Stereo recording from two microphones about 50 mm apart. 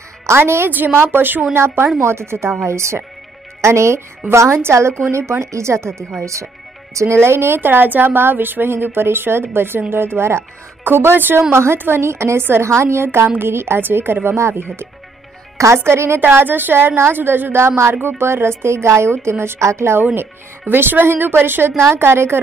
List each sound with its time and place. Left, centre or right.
0.3 s a woman's voice: right
0.9 s a woman's voice: right
6.9 s speech: right
7.2 s a woman's voice: right
15.5 s music: right
15.8 s a woman's voice: right
16.2 s a woman's voice: right
20.7 s a woman's voice: right